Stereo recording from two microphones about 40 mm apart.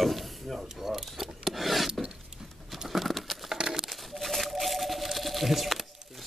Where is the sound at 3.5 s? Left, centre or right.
Centre.